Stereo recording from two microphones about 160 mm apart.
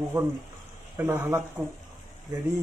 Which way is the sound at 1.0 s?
15° right (ahead or behind).